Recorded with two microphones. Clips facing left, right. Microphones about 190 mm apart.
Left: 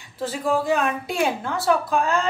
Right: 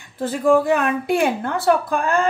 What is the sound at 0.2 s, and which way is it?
A woman's voice, 55° right (ahead or behind).